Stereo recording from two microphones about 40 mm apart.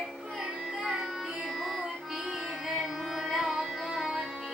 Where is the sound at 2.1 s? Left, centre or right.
Centre.